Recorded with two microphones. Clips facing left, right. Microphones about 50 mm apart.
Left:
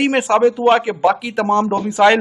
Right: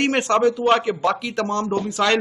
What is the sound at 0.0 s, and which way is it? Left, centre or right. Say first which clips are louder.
A man's voice: left 4 dB; centre.